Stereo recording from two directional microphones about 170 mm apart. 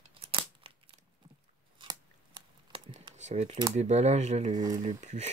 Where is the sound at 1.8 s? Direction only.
30° right (ahead or behind).